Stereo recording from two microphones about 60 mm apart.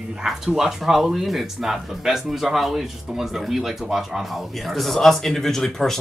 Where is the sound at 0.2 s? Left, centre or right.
Centre.